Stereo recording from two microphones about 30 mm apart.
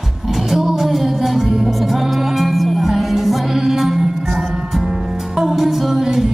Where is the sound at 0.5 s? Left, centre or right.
Centre.